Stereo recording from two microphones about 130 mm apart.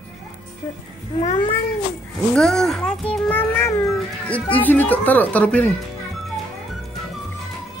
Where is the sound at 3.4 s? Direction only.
20° left (ahead or behind).